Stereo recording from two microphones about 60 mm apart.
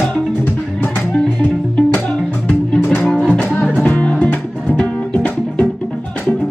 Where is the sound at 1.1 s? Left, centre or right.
Left.